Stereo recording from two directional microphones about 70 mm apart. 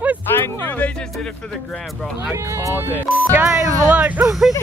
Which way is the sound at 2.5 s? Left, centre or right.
Right.